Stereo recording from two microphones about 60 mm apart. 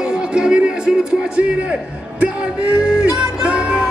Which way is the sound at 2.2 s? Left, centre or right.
Centre.